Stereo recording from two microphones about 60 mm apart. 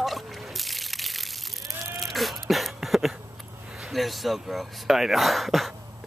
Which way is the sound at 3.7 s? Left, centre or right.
Centre.